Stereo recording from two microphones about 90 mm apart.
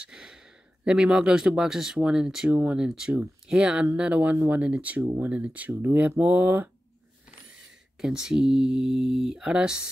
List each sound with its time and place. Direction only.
0.1 s speech: 5° right (ahead or behind)
8.0 s speech: 5° right (ahead or behind)